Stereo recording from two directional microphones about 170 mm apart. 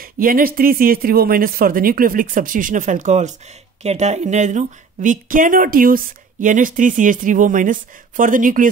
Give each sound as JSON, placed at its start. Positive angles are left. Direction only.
{"t": 0.0, "sound": "a woman's voice", "side_deg": -55}